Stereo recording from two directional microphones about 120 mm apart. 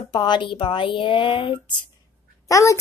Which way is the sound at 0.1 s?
40° left (ahead or behind).